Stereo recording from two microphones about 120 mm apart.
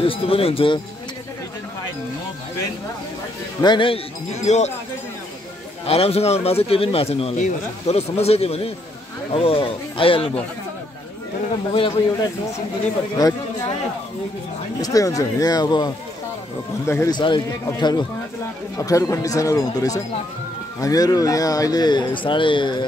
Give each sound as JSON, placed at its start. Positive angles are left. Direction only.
{"t": 0.0, "sound": "speech", "side_deg": 50}
{"t": 3.6, "sound": "speech", "side_deg": 45}
{"t": 4.3, "sound": "speech", "side_deg": 70}
{"t": 5.9, "sound": "speech", "side_deg": 55}
{"t": 7.3, "sound": "speech", "side_deg": 75}
{"t": 13.1, "sound": "speech", "side_deg": 30}
{"t": 14.8, "sound": "speech", "side_deg": 30}
{"t": 16.8, "sound": "speech", "side_deg": 20}
{"t": 17.1, "sound": "speech", "side_deg": 40}
{"t": 18.8, "sound": "speech", "side_deg": 25}